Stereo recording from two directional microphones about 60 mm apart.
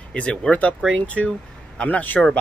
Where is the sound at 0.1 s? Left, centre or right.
Centre.